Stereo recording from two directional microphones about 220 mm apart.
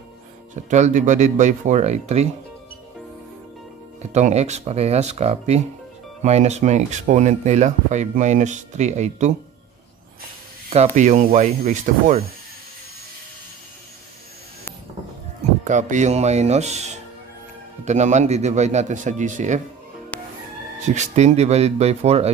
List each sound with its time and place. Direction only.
0.7 s speech: 30° right (ahead or behind)
4.0 s speech: 30° right (ahead or behind)
10.7 s speech: 30° right (ahead or behind)
15.6 s speech: 35° right (ahead or behind)
20.8 s speech: 35° right (ahead or behind)